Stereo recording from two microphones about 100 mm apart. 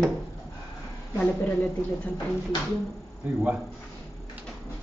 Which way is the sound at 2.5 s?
50° left (ahead or behind).